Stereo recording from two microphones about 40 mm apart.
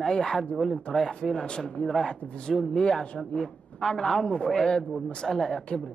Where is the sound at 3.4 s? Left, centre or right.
Centre.